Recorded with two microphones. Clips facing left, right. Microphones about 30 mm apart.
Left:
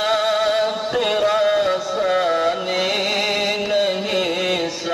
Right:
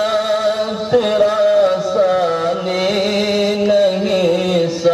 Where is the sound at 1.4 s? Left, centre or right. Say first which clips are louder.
Right 5 dB; centre.